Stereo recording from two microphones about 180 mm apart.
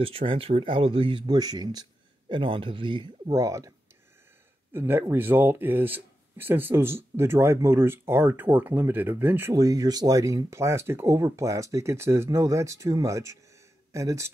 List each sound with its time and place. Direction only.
0.0 s speech: 30° right (ahead or behind)
4.7 s speech: 10° right (ahead or behind)